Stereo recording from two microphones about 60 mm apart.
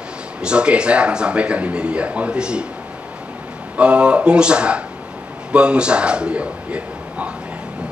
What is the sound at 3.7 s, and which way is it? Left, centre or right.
A man's voice, centre.